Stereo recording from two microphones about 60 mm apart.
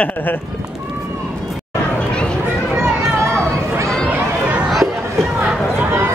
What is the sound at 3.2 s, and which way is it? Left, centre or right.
Chatter, right.